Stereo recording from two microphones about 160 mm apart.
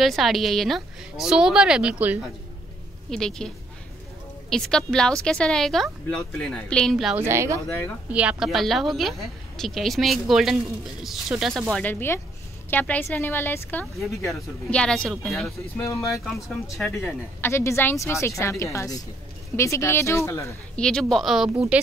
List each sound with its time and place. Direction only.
0.0 s speech: centre (ahead or behind)
3.1 s speech: 5° left (ahead or behind)
7.2 s speech: 15° right (ahead or behind)
8.1 s speech: 5° right (ahead or behind)
11.7 s speech: 10° left (ahead or behind)
15.8 s speech: 20° left (ahead or behind)
20.7 s speech: 5° left (ahead or behind)